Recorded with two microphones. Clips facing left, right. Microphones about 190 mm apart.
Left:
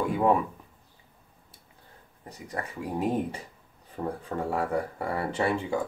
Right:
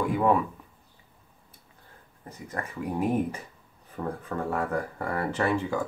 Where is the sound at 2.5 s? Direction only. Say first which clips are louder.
Right 1 dB; 25° left (ahead or behind).